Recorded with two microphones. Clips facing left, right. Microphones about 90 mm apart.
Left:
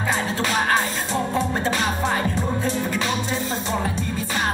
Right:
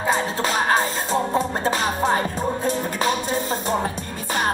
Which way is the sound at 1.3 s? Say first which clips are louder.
Right 1 dB; 35° right (ahead or behind).